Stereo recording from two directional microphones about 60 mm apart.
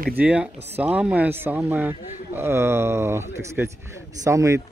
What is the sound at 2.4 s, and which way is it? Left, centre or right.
Speech, right.